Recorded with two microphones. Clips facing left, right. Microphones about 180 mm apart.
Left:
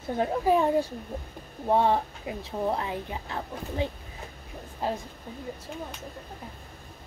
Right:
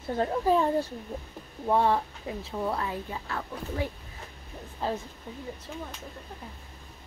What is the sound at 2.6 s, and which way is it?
A woman's voice, 20° left (ahead or behind).